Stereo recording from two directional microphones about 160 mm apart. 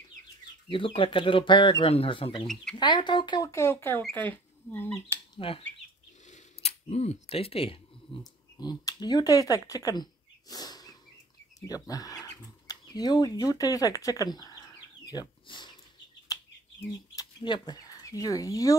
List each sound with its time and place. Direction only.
0.7 s speech: 35° left (ahead or behind)
2.4 s speech: 5° left (ahead or behind)
2.8 s speech: 30° left (ahead or behind); by 4.9 s 10° left (ahead or behind)
5.4 s speech: 35° left (ahead or behind)
6.2 s camera: 45° left (ahead or behind)
8.5 s speech: 25° left (ahead or behind)
10.5 s a sound: 25° left (ahead or behind)
11.6 s speech: 20° left (ahead or behind)
15.0 s dog: 30° left (ahead or behind)
16.3 s bird: 20° left (ahead or behind)
17.4 s speech: 30° left (ahead or behind)